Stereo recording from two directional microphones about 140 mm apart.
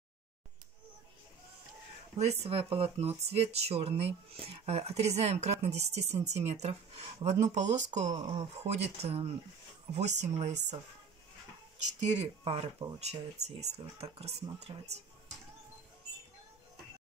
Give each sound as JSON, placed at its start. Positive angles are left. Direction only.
{"t": 2.1, "sound": "speech", "side_deg": -50}
{"t": 8.3, "sound": "speech", "side_deg": -45}
{"t": 12.0, "sound": "speech", "side_deg": -55}